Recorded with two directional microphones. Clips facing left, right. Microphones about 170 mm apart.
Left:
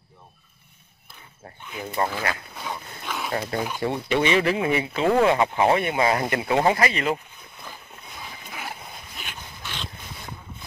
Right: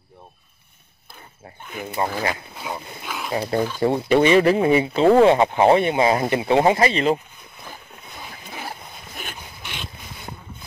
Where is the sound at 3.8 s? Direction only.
40° right (ahead or behind).